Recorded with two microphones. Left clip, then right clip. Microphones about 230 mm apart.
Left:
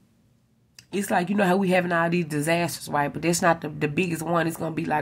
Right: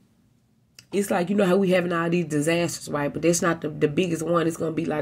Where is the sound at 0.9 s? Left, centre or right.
Centre.